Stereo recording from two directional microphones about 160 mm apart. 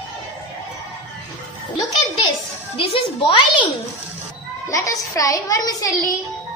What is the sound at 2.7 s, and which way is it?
Speech, 35° left (ahead or behind).